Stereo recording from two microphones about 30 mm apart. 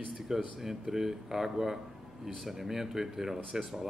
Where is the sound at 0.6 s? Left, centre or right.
Centre.